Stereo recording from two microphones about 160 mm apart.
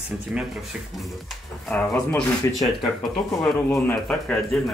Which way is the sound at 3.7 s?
10° left (ahead or behind).